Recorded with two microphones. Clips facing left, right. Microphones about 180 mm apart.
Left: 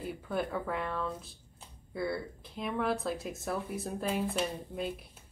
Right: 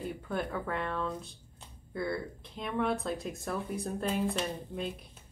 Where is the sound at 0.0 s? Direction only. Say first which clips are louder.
Even; 5° left (ahead or behind).